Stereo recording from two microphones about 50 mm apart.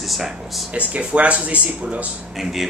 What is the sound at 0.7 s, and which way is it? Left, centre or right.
Speech, right.